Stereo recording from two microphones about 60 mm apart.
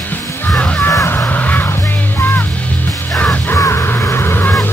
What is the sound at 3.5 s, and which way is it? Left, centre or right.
Crow, left.